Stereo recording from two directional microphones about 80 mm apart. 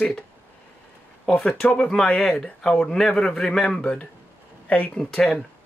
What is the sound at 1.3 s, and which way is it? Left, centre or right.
Speech, centre.